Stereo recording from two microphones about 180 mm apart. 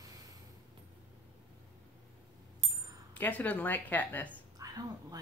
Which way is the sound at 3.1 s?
10° left (ahead or behind).